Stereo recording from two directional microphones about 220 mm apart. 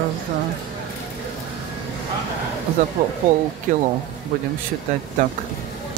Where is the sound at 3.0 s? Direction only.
40° right (ahead or behind).